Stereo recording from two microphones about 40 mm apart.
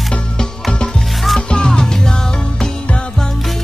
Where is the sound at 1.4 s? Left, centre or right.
Left.